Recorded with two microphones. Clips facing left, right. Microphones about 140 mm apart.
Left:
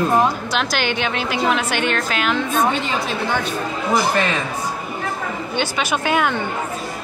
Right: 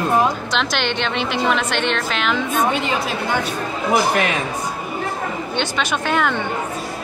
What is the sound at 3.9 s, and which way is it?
Speech, 10° right (ahead or behind).